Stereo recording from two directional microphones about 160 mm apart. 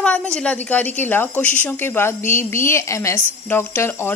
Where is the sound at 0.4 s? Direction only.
10° left (ahead or behind).